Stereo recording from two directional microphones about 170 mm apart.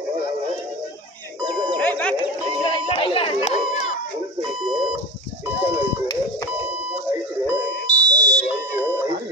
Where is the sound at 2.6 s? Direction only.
25° left (ahead or behind).